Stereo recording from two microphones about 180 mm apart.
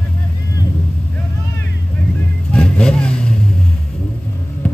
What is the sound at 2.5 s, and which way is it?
Vehicle, 5° left (ahead or behind).